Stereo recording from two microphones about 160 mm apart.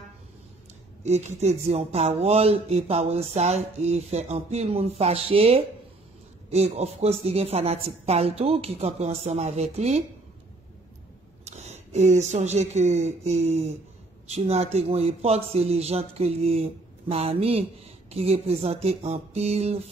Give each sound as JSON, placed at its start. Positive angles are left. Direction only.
{"t": 1.0, "sound": "speech", "side_deg": -45}
{"t": 11.4, "sound": "speech", "side_deg": -45}